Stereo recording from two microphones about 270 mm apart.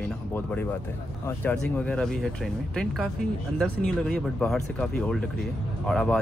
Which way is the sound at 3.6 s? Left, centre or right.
Centre.